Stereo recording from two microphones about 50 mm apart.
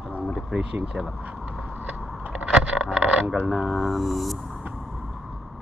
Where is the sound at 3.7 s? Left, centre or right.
Centre.